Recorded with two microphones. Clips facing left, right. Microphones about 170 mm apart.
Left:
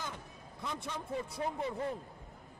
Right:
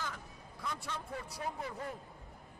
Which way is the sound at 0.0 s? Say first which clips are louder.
Even; 20° left (ahead or behind).